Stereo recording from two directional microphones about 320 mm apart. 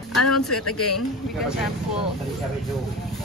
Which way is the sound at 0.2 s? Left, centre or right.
Left.